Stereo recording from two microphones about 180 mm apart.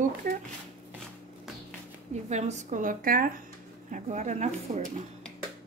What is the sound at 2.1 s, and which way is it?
A woman's voice, 40° right (ahead or behind).